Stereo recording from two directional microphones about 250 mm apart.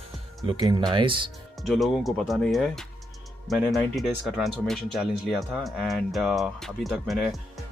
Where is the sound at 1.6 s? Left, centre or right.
Centre.